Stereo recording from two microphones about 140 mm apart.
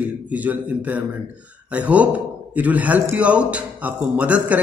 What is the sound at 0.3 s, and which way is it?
Speech, 10° right (ahead or behind).